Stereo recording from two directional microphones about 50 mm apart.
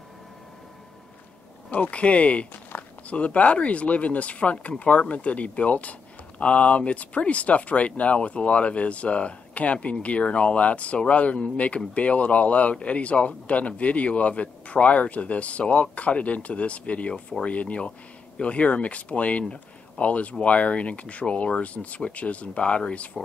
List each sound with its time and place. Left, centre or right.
1.7 s speech: left
2.7 s a sound: left
3.1 s speech: left
17.1 s speech: centre
17.5 s speech: left